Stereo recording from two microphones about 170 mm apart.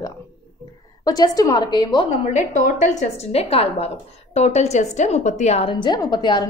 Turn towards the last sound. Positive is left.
turn(degrees=25)  # may be behind; listen again after turning